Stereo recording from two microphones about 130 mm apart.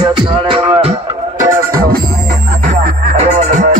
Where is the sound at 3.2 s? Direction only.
65° right (ahead or behind).